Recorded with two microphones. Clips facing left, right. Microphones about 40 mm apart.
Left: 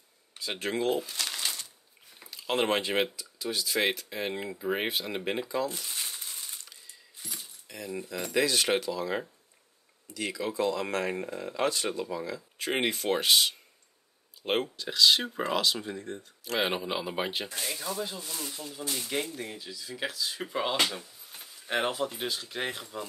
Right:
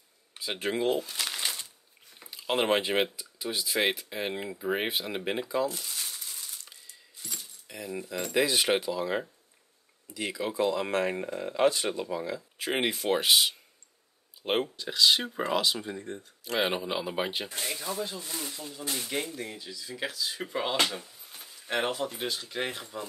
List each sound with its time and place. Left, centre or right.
0.4 s speech: centre
1.1 s shuffling cards: centre
2.3 s speech: centre
5.9 s crumpling: centre
6.1 s crushing: left
7.2 s keys jangling: centre
7.6 s speech: centre
17.9 s speech: centre
18.2 s speech: centre
18.8 s speech: centre
19.2 s speech: centre